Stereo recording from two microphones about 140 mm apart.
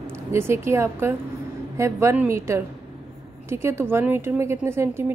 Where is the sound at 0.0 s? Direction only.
20° right (ahead or behind).